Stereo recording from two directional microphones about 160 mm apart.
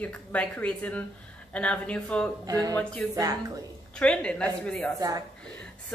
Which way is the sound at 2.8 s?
10° left (ahead or behind).